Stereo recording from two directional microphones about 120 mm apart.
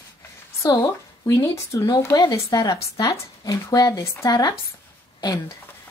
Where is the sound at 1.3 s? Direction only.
25° left (ahead or behind).